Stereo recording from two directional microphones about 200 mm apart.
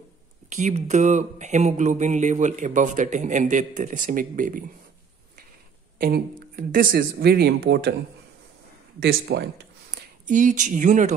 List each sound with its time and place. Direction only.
0.5 s speech: 35° right (ahead or behind)
5.9 s speech: 50° right (ahead or behind)
9.0 s speech: 50° right (ahead or behind)
10.2 s speech: 40° right (ahead or behind)